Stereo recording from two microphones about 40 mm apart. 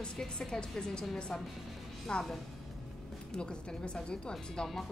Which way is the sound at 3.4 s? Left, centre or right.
Left.